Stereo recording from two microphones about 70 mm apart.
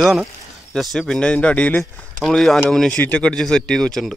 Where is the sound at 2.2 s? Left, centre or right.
Centre.